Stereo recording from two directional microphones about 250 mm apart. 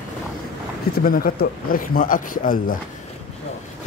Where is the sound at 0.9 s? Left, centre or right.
Left.